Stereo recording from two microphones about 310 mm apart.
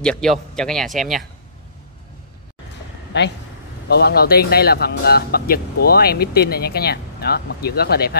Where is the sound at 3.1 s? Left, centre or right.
Left.